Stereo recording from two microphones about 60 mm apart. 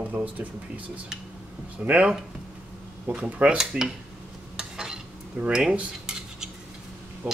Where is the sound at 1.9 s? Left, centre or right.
Centre.